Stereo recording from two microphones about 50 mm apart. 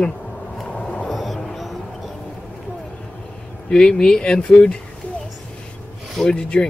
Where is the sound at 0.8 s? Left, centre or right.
Left.